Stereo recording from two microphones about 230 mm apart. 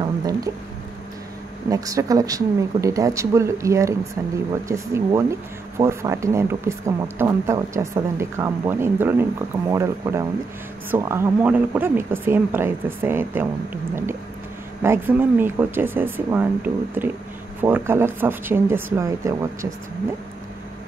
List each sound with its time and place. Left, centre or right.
0.0 s a sound: centre
1.7 s a woman's voice: centre
14.8 s a woman's voice: centre